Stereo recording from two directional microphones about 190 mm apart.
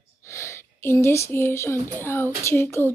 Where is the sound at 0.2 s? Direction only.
15° left (ahead or behind).